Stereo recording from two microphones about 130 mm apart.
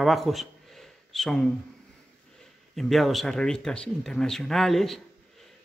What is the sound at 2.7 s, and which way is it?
A man's voice, centre (ahead or behind).